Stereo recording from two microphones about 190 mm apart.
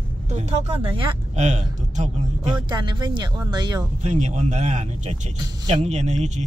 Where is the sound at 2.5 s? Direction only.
25° right (ahead or behind).